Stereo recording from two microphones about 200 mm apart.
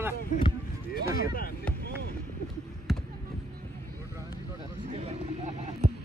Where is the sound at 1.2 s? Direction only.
45° left (ahead or behind).